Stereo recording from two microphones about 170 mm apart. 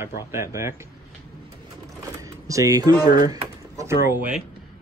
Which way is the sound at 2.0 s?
20° right (ahead or behind).